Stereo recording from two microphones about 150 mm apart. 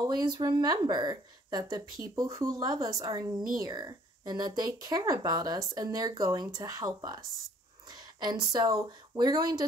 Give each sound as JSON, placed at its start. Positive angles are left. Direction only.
{"t": 0.1, "sound": "a woman's voice", "side_deg": -25}